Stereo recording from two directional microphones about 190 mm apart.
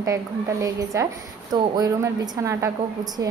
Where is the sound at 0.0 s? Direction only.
15° right (ahead or behind).